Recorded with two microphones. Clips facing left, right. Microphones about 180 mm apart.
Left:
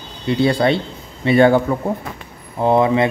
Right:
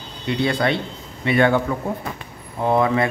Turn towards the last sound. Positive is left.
turn(degrees=25)  # may be behind; listen again after turning